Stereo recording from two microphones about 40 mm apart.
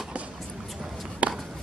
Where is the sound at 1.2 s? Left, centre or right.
Right.